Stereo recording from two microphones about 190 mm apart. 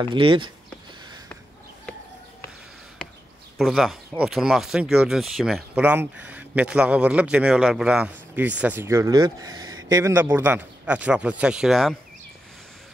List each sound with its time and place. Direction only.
0.0 s speech: 25° right (ahead or behind)
3.5 s a man's voice: centre (ahead or behind)